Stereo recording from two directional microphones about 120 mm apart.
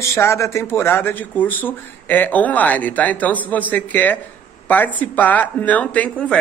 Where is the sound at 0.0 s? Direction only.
25° left (ahead or behind).